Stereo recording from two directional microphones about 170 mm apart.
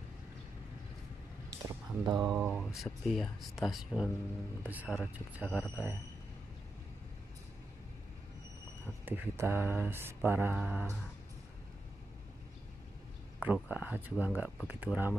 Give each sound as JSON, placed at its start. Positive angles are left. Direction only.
{"t": 1.6, "sound": "a sound", "side_deg": -20}
{"t": 2.3, "sound": "mantra", "side_deg": -10}
{"t": 2.6, "sound": "speech", "side_deg": 0}
{"t": 4.6, "sound": "mantra", "side_deg": -10}
{"t": 9.0, "sound": "mantra", "side_deg": -10}
{"t": 13.4, "sound": "mantra", "side_deg": -10}